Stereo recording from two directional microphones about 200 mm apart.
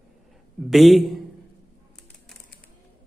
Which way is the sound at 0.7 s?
Centre (ahead or behind).